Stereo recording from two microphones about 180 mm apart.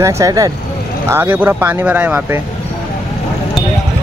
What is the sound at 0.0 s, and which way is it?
Speech, 20° right (ahead or behind).